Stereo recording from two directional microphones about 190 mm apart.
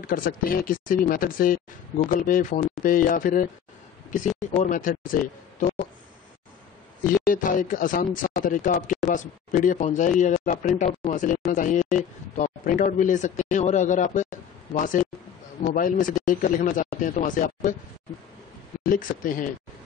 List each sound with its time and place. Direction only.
0.0 s speech: 50° left (ahead or behind)
4.5 s speech: 45° left (ahead or behind)
5.6 s a sound: 40° left (ahead or behind)
7.2 s speech: 45° left (ahead or behind)
18.9 s speech: 45° left (ahead or behind)